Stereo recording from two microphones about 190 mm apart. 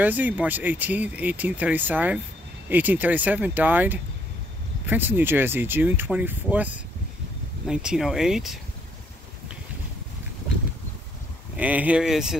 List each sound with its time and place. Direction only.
0.0 s speech: 10° right (ahead or behind)
11.5 s speech: 10° right (ahead or behind)